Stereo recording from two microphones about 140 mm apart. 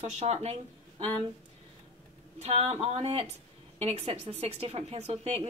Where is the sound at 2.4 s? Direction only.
45° right (ahead or behind).